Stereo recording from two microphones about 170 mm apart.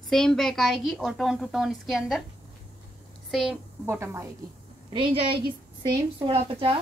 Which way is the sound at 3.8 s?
15° right (ahead or behind).